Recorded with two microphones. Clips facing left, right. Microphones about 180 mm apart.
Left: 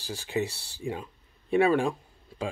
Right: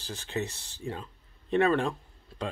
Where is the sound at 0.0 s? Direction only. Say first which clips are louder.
Left 4 dB; 10° left (ahead or behind).